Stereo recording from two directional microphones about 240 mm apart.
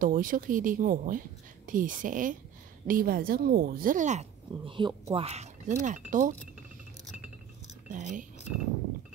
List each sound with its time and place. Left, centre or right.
0.0 s speech: right
7.9 s speech: right